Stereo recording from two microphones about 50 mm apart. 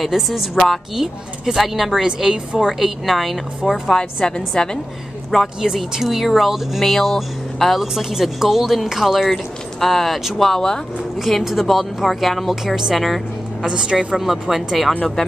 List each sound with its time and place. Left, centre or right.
0.0 s speech: centre
3.9 s a woman's voice: centre
5.6 s speech: centre
11.1 s speech: centre
13.7 s a woman's voice: centre
14.1 s speech: centre